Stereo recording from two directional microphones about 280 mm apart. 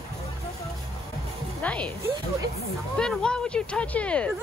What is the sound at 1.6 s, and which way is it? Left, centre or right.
Music, centre.